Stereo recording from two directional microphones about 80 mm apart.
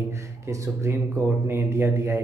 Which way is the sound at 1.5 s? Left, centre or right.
Right.